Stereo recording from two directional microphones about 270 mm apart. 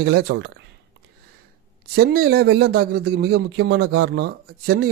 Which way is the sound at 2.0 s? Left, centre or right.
Right.